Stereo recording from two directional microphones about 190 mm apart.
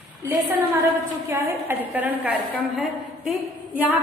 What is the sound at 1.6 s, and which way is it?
A woman's voice, 10° right (ahead or behind).